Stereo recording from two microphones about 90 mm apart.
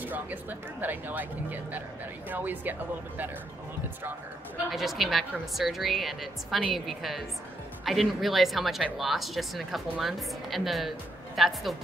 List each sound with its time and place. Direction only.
0.0 s speech: 20° right (ahead or behind)
4.6 s speech: centre (ahead or behind)